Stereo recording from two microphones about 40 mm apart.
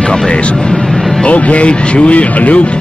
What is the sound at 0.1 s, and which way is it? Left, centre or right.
Speech, centre.